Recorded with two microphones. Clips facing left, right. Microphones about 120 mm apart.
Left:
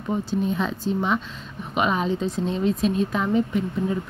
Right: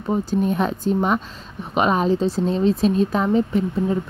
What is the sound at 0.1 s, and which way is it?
A woman's voice, 45° right (ahead or behind).